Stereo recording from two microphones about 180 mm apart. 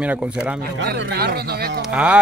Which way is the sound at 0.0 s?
5° right (ahead or behind).